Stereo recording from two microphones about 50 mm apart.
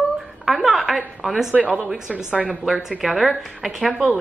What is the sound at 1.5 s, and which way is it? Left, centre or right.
Speech, right.